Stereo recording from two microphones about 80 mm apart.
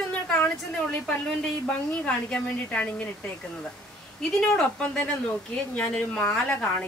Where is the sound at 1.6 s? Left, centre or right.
Centre.